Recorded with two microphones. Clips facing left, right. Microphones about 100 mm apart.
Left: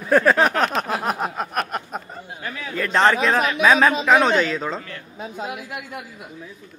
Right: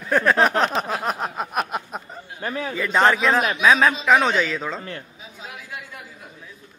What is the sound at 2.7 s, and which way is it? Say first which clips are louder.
A man's voice: left 1 dB; 5° right (ahead or behind).